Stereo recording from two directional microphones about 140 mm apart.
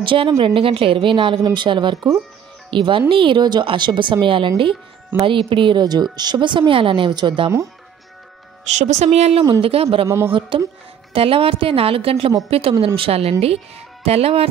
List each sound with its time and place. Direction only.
0.0 s a woman's voice: 35° right (ahead or behind)
8.6 s speech: 55° right (ahead or behind)
9.4 s a woman's voice: 35° right (ahead or behind)
10.0 s speech: 20° right (ahead or behind)
10.5 s a woman's voice: 40° right (ahead or behind)